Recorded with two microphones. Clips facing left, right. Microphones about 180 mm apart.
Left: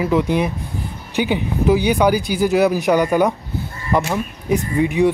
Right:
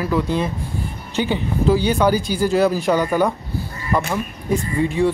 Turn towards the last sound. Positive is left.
turn(degrees=15)  # may be behind; listen again after turning